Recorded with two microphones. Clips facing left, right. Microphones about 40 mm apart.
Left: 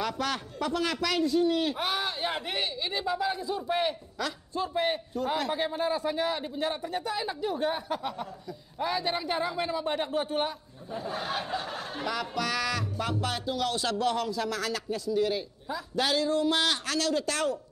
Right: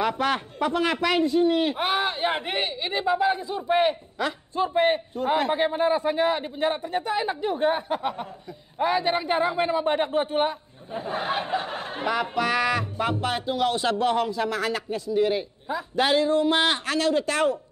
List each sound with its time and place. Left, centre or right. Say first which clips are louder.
0.0 s speech: right 7 dB; right